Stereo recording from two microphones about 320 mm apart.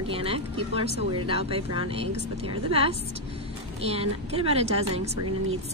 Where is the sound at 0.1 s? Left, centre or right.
Centre.